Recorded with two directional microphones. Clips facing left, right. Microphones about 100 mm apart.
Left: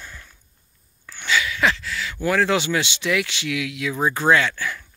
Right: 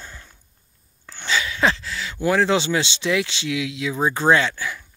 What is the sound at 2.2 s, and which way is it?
Speech, 25° right (ahead or behind).